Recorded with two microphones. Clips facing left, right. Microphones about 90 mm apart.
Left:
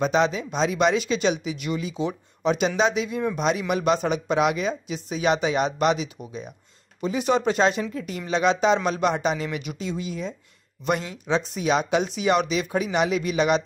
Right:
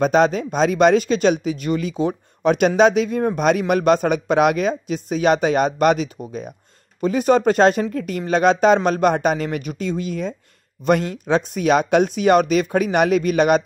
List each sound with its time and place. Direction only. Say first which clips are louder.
0.0 s speech: right 6 dB; 50° right (ahead or behind)